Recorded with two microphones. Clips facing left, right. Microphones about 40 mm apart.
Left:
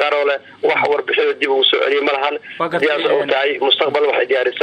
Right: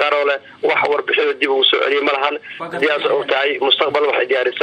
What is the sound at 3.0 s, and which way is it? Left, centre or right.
Speech, left.